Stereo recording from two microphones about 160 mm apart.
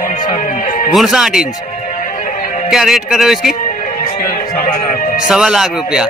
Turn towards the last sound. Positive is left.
turn(degrees=-5)  # may be behind; listen again after turning